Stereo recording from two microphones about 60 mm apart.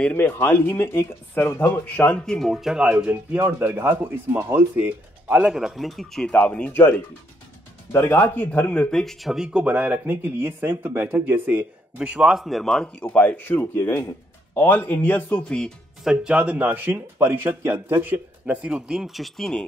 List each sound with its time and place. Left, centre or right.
0.0 s speech: centre
1.7 s speech: centre; by 4.9 s right
5.3 s speech: centre
12.1 s speech: centre
13.0 s speech: left
16.1 s a man's voice: centre